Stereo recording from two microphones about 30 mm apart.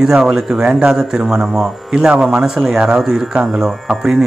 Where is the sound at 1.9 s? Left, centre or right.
Right.